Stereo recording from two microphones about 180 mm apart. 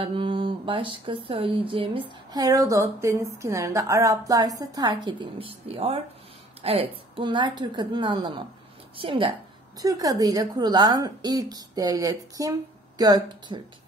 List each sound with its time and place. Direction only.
0.0 s speech: 30° right (ahead or behind)